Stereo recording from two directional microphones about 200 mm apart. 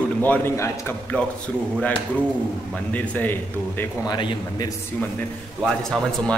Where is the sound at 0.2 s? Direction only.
10° left (ahead or behind).